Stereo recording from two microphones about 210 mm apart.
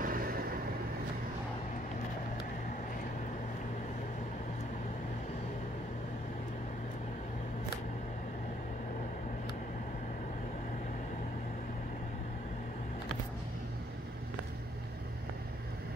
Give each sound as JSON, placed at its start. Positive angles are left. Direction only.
{"t": 0.0, "sound": "vehicle", "side_deg": -45}